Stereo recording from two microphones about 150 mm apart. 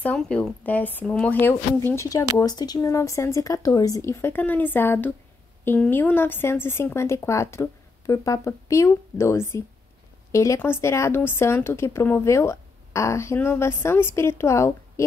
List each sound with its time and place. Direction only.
0.0 s speech: 10° left (ahead or behind)